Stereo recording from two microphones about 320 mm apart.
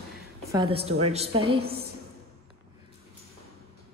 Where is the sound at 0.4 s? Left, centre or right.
Centre.